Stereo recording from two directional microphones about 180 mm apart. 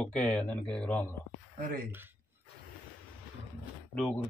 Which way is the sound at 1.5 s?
50° right (ahead or behind).